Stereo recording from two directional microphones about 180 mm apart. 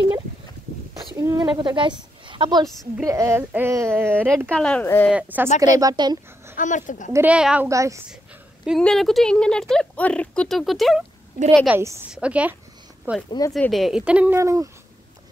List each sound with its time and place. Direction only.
1.1 s a woman's voice: 20° right (ahead or behind)
4.5 s speech: 5° left (ahead or behind)
5.1 s a woman's voice: 10° right (ahead or behind)
5.8 s speech: 20° right (ahead or behind)
6.5 s speech: 45° left (ahead or behind)
7.1 s a woman's voice: 10° right (ahead or behind)
7.7 s a woman's voice: 15° right (ahead or behind)
8.6 s a woman's voice: centre (ahead or behind)
13.5 s speech: centre (ahead or behind); by 14.7 s 15° right (ahead or behind)